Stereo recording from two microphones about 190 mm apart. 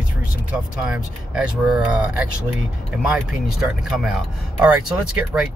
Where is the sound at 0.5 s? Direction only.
5° right (ahead or behind).